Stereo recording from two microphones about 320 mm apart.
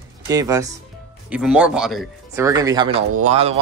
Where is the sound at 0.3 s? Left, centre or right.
Centre.